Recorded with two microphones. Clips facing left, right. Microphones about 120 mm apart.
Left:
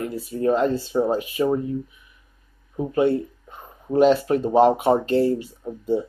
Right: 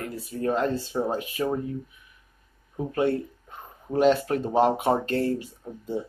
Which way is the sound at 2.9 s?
15° left (ahead or behind).